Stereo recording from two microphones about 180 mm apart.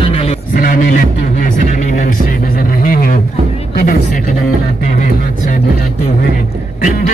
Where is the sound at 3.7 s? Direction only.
50° left (ahead or behind).